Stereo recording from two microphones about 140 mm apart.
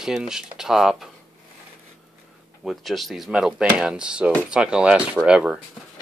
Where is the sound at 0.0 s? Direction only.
5° right (ahead or behind).